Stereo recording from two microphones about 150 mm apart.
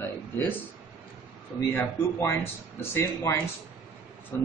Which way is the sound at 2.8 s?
15° left (ahead or behind).